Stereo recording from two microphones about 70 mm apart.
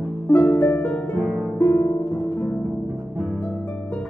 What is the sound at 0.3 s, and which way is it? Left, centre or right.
Harp, left.